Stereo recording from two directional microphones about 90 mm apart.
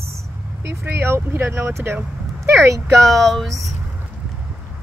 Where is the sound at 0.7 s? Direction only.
30° right (ahead or behind).